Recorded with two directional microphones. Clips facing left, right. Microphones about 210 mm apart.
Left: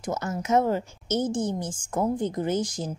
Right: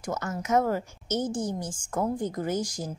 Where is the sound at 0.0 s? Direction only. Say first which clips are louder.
Left 2 dB; 25° left (ahead or behind).